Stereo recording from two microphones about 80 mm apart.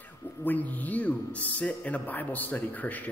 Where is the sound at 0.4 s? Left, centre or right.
Left.